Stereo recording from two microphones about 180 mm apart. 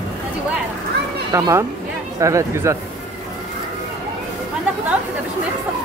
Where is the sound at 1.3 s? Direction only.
20° right (ahead or behind).